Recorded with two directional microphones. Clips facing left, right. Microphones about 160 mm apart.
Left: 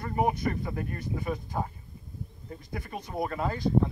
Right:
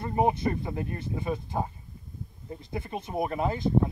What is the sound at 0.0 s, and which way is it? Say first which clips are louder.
Speech: right 2 dB; 25° right (ahead or behind).